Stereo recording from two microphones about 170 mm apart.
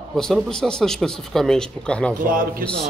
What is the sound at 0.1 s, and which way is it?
Speech, centre (ahead or behind).